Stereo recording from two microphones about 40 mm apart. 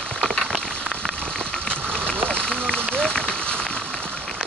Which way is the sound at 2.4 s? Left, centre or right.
Left.